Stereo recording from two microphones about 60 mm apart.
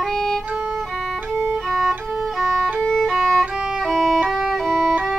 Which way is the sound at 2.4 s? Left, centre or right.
Centre.